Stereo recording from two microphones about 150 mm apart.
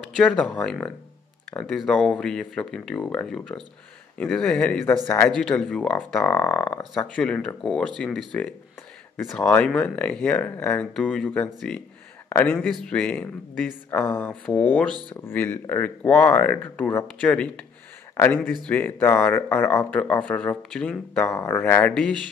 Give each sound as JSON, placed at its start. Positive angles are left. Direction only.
{"t": 0.1, "sound": "speech", "side_deg": 0}
{"t": 9.4, "sound": "speech", "side_deg": 10}